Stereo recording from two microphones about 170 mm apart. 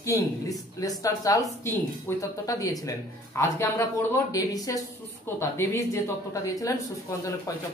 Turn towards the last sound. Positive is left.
turn(degrees=20)  # may be behind; listen again after turning